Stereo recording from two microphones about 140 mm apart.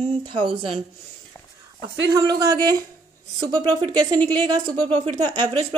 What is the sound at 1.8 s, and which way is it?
Speech, 25° right (ahead or behind).